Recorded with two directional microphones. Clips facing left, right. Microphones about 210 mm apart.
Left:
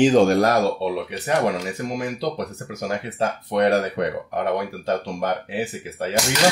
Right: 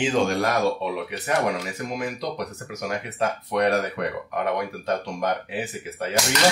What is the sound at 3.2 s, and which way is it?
Speech, 30° left (ahead or behind).